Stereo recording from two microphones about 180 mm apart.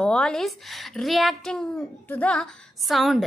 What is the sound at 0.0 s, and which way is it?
A woman's voice, 5° left (ahead or behind).